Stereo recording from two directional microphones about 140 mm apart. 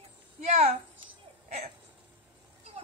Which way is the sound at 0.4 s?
50° right (ahead or behind).